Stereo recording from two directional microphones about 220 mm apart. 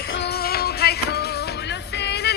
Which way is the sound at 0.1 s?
50° left (ahead or behind).